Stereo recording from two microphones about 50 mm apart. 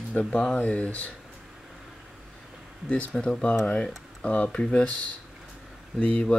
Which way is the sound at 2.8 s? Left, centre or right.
Left.